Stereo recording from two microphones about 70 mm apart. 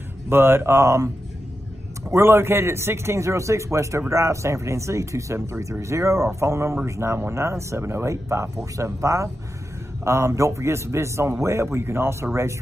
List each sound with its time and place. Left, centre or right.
0.3 s a man's voice: right